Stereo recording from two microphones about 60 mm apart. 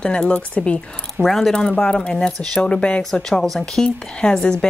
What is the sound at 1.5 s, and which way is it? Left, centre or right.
Speech, centre.